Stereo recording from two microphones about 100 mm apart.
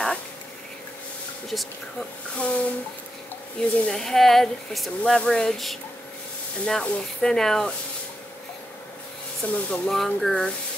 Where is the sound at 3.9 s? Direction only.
5° left (ahead or behind).